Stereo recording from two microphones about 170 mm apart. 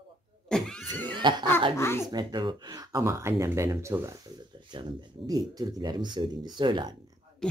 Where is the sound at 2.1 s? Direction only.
25° right (ahead or behind).